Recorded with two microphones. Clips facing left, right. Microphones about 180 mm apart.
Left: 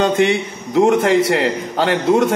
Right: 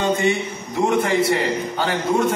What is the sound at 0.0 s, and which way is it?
A man's voice, 85° left.